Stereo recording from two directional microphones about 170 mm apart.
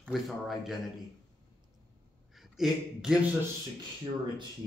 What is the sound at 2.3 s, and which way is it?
Speech, centre (ahead or behind).